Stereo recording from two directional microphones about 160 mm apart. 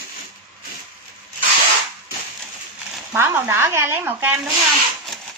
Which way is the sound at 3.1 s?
15° right (ahead or behind).